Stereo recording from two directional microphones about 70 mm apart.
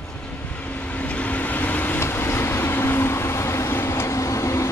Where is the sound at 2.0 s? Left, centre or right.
Left.